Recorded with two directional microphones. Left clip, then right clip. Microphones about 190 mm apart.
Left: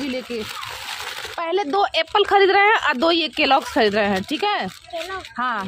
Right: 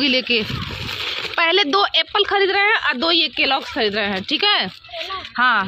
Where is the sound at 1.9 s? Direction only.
20° left (ahead or behind).